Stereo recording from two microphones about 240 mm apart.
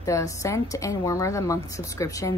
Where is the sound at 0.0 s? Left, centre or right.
Centre.